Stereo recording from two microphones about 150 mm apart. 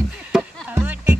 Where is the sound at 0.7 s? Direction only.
15° right (ahead or behind).